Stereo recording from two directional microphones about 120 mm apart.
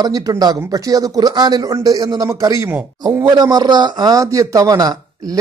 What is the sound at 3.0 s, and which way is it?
Speech, 35° right (ahead or behind).